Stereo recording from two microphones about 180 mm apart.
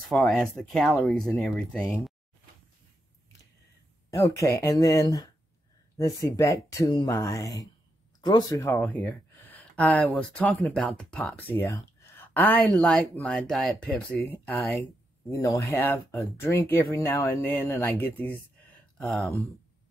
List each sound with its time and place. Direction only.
0.1 s speech: centre (ahead or behind)
4.1 s speech: 15° left (ahead or behind)
8.8 s speech: 5° left (ahead or behind)
15.2 s speech: 15° left (ahead or behind); by 19.4 s centre (ahead or behind)